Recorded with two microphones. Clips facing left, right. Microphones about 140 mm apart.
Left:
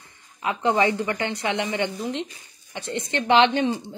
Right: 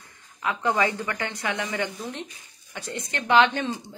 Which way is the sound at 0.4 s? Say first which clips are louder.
Left 3 dB; 20° left (ahead or behind).